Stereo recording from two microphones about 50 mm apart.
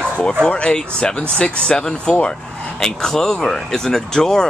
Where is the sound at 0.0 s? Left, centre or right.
Centre.